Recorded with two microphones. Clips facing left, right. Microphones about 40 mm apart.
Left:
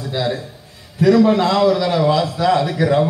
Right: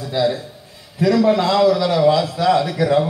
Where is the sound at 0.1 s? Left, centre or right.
Left.